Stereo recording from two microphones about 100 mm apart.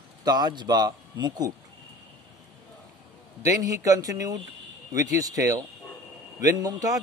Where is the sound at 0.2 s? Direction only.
45° right (ahead or behind).